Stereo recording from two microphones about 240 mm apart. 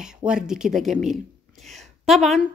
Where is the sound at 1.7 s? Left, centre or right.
Centre.